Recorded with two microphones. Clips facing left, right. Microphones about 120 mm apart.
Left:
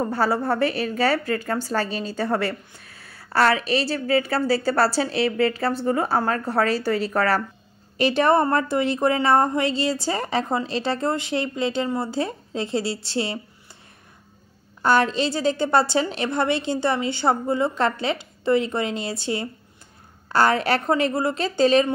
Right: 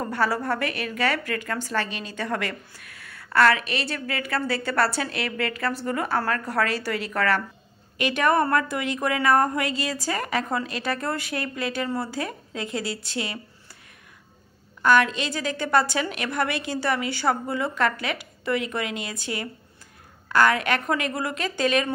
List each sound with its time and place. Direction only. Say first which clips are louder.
0.0 s a woman's voice: left 3 dB; 30° left (ahead or behind)
14.8 s a woman's voice: left 1 dB; 30° left (ahead or behind)